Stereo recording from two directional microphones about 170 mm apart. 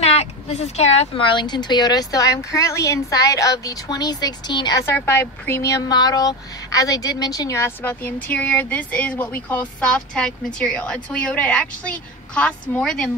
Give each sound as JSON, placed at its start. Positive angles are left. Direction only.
{"t": 0.0, "sound": "speech", "side_deg": 40}